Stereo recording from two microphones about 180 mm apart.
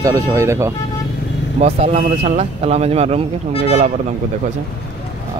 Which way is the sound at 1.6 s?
40° right (ahead or behind).